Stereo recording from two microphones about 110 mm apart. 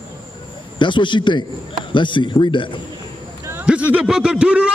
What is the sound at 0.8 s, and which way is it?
A man's voice, 45° left (ahead or behind).